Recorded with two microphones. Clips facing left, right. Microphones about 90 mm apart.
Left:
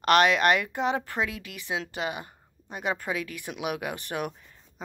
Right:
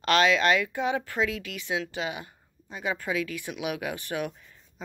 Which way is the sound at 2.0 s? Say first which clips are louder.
Left 1 dB; 45° left (ahead or behind).